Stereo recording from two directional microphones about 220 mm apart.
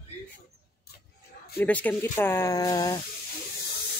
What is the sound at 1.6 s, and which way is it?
Speech, 5° left (ahead or behind).